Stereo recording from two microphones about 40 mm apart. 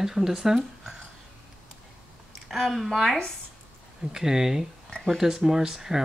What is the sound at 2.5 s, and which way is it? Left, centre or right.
Speech, centre.